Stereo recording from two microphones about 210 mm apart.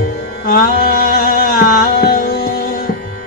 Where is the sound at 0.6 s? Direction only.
40° left (ahead or behind).